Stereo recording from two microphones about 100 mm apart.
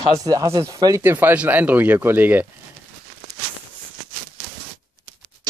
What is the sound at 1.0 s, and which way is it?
Speech, 20° right (ahead or behind).